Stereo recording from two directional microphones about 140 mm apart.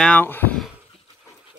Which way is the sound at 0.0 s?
10° left (ahead or behind).